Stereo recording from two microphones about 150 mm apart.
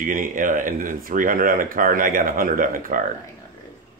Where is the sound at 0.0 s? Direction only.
65° right (ahead or behind).